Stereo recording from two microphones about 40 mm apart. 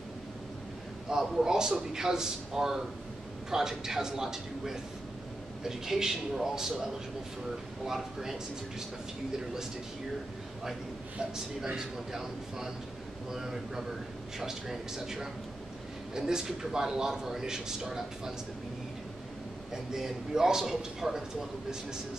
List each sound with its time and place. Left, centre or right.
1.1 s a man's voice: centre
11.3 s a man's voice: centre
19.7 s a man's voice: centre